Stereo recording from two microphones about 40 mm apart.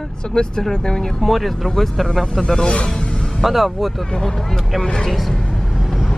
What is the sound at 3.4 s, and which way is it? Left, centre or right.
Speech, centre.